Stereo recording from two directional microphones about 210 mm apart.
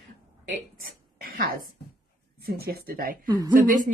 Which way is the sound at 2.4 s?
45° right (ahead or behind).